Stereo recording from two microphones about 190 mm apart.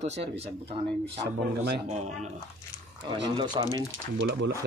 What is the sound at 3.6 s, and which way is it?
Speech, 25° right (ahead or behind).